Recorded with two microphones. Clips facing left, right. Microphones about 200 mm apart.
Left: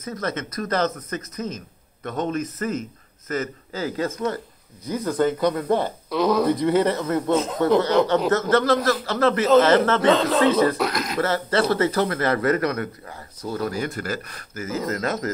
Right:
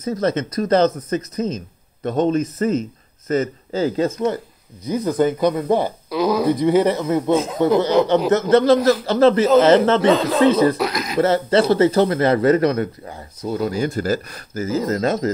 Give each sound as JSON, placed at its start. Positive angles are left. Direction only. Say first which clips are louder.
{"t": 0.0, "sound": "speech", "louder": "right 8 dB", "side_deg": -30}
{"t": 8.3, "sound": "speech", "louder": "right 5 dB", "side_deg": -25}
{"t": 10.0, "sound": "speech", "louder": "right 3 dB", "side_deg": -5}
{"t": 11.1, "sound": "speech", "louder": "right 7 dB", "side_deg": -25}